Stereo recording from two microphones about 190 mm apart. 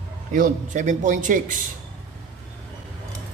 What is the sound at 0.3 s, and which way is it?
Speech, 40° right (ahead or behind).